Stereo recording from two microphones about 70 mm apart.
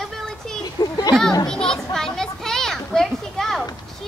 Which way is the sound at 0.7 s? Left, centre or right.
Left.